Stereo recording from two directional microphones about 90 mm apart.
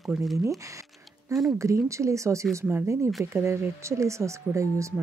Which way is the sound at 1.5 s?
35° right (ahead or behind).